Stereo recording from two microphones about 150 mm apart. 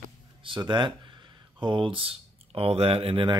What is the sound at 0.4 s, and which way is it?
Speech, 35° right (ahead or behind).